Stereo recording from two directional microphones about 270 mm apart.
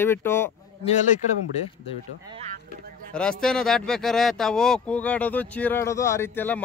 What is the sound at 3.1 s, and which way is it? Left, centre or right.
Speech, centre.